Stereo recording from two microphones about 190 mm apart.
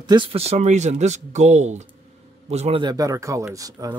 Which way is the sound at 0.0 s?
25° right (ahead or behind).